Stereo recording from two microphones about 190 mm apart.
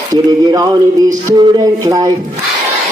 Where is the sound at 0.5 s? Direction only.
20° right (ahead or behind).